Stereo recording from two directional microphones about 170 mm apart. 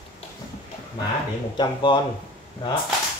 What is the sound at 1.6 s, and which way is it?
Speech, 25° left (ahead or behind).